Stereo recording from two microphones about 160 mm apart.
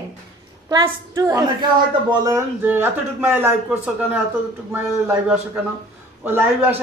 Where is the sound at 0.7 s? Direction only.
25° right (ahead or behind).